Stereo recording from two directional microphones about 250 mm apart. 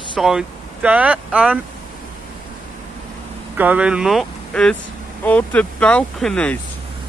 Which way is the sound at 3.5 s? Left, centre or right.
Centre.